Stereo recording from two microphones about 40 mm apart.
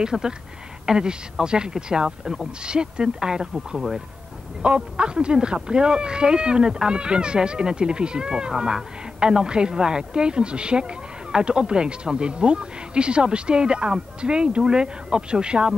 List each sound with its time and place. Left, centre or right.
0.0 s speech: centre
4.6 s speech: right